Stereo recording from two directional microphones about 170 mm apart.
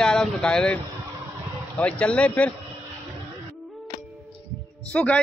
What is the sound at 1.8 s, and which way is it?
Speech, 5° left (ahead or behind).